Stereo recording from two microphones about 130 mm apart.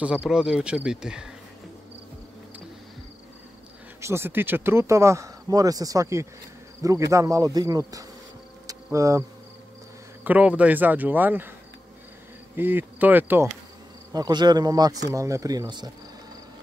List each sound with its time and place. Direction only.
0.0 s speech: 5° right (ahead or behind)
4.0 s speech: 20° right (ahead or behind)
8.6 s insect: 25° right (ahead or behind)
10.2 s speech: 10° right (ahead or behind)
12.5 s speech: 15° right (ahead or behind)
14.1 s speech: 30° right (ahead or behind)